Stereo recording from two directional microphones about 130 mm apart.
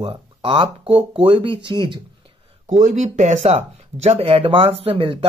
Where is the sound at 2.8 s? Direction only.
65° right (ahead or behind).